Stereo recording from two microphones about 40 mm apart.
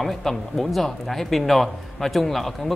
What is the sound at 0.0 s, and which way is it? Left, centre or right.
Speech, centre.